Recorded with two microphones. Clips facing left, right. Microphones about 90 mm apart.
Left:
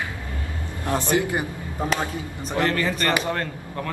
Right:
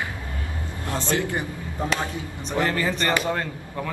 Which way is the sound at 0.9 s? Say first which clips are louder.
Left 3 dB; 15° left (ahead or behind).